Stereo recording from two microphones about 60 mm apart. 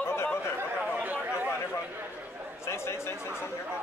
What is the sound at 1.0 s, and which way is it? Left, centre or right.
Chatter, right.